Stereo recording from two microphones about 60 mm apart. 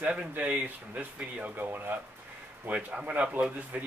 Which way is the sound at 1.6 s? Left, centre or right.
Right.